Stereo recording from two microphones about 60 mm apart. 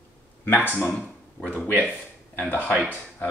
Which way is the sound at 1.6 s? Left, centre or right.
Left.